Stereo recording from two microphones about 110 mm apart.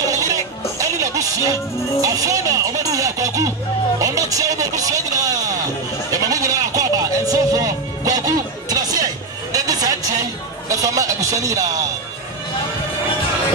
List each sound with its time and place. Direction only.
0.0 s music: 30° right (ahead or behind)
4.0 s speech: 30° right (ahead or behind)
6.1 s music: 35° right (ahead or behind)
10.7 s speech: 30° right (ahead or behind)